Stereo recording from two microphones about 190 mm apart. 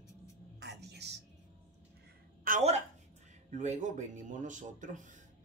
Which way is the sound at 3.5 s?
40° right (ahead or behind).